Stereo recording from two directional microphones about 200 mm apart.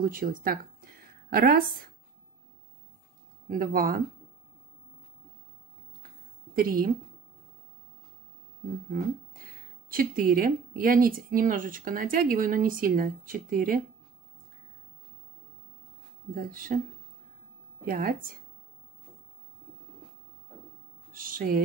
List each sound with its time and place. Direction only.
0.0 s speech: 45° right (ahead or behind)
3.4 s speech: 45° right (ahead or behind)
6.5 s speech: 45° right (ahead or behind)
9.8 s speech: 45° right (ahead or behind)
16.4 s speech: 45° right (ahead or behind)
17.8 s speech: 45° right (ahead or behind)
21.1 s music: 45° right (ahead or behind)